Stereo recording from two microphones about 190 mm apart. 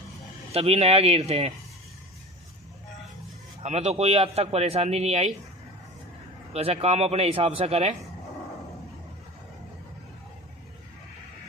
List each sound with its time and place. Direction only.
0.5 s a man's voice: 30° right (ahead or behind)
3.6 s a man's voice: 35° right (ahead or behind)
6.5 s a man's voice: 35° right (ahead or behind)